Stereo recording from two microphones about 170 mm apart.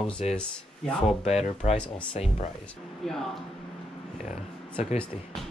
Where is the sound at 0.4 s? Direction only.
5° left (ahead or behind).